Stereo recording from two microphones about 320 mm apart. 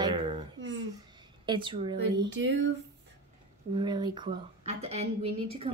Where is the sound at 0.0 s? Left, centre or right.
Centre.